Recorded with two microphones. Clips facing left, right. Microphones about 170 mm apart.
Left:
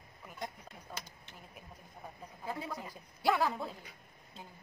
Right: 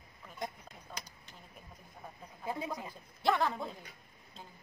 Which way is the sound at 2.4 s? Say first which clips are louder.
Right 2 dB; 15° right (ahead or behind).